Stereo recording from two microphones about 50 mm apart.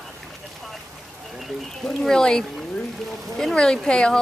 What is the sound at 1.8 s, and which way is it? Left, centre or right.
Speech, centre.